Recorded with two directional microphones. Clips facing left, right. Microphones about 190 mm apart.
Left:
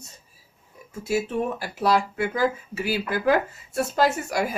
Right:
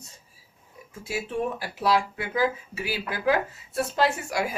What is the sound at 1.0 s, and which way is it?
Speech, 45° left (ahead or behind).